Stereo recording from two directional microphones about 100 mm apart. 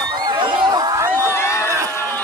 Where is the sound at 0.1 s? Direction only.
50° right (ahead or behind).